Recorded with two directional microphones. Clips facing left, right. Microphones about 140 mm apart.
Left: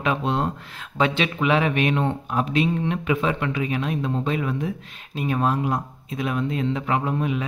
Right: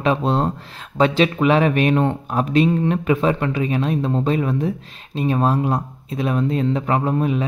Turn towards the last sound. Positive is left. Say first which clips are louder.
# right 5 dB
turn(degrees=-35)  # may be behind; listen again after turning